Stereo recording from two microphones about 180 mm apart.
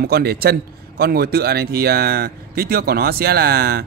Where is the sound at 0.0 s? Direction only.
60° right (ahead or behind).